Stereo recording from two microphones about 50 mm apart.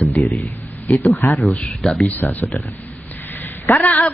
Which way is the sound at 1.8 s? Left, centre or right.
Centre.